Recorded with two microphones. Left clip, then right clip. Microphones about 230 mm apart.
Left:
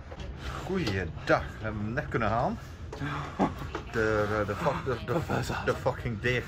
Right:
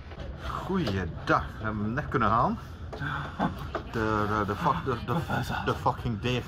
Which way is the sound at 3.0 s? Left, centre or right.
Left.